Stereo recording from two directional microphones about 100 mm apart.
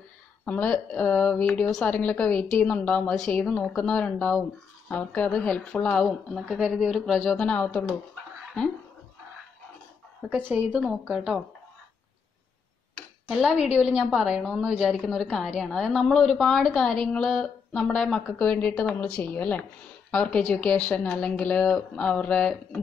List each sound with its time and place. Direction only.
0.5 s a woman's voice: 15° left (ahead or behind)
6.0 s a woman's voice: centre (ahead or behind)
7.3 s a woman's voice: 15° left (ahead or behind)
10.3 s a woman's voice: 15° right (ahead or behind)
13.3 s a woman's voice: 5° right (ahead or behind); by 22.8 s 10° left (ahead or behind)